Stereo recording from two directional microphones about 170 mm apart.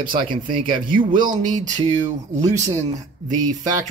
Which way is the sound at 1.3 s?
50° right (ahead or behind).